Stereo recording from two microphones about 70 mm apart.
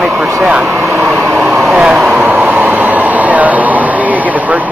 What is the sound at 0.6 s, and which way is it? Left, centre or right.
Speech, right.